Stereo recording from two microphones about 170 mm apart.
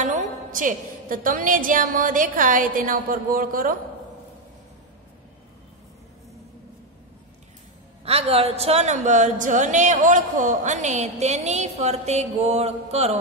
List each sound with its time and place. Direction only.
0.0 s a woman's voice: 50° right (ahead or behind)
8.0 s a woman's voice: 35° right (ahead or behind)